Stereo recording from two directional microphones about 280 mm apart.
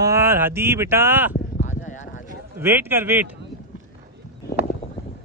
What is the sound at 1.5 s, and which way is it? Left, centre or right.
Clip-clop, left.